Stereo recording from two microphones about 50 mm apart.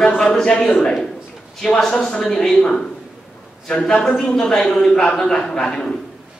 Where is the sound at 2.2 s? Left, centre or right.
Centre.